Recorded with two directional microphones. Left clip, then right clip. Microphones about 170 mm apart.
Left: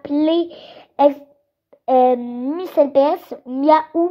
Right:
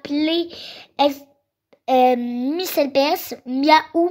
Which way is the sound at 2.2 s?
30° right (ahead or behind).